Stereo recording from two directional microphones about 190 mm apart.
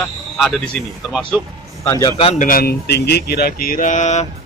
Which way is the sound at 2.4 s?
50° left (ahead or behind).